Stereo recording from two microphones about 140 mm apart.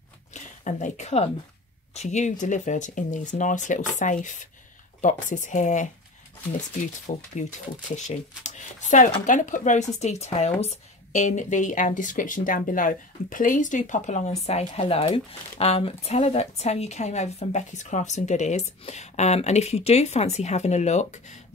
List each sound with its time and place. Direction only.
0.3 s speech: 60° left (ahead or behind)